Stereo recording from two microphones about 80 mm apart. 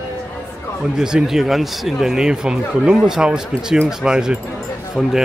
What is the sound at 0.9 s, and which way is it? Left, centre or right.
Speech, centre.